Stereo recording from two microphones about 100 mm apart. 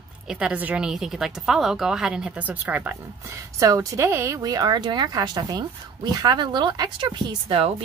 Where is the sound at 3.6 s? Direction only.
30° right (ahead or behind).